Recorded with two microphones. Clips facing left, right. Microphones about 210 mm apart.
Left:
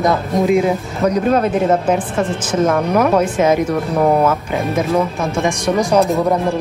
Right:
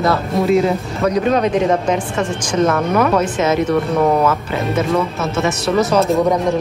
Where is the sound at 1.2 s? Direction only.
5° left (ahead or behind).